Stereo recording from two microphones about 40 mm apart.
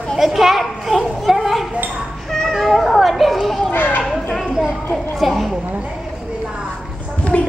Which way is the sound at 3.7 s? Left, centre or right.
Left.